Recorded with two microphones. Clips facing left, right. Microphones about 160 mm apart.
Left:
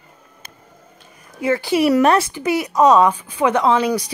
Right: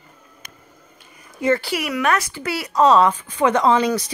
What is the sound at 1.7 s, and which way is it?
Speech, 25° left (ahead or behind).